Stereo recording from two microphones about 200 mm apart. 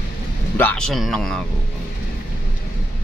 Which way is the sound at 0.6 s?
5° left (ahead or behind).